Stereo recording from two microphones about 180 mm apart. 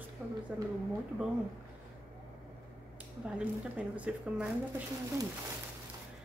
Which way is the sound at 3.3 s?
10° right (ahead or behind).